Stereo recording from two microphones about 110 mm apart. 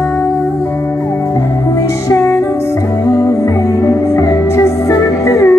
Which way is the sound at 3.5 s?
30° left (ahead or behind).